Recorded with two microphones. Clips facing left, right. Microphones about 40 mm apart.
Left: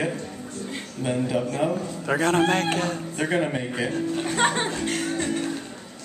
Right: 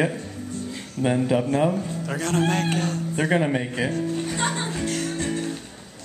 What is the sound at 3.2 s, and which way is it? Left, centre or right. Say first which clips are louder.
Speech: right 3 dB; centre.